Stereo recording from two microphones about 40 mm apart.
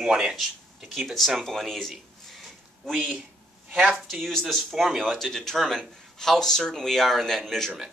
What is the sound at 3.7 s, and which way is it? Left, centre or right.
Speech, right.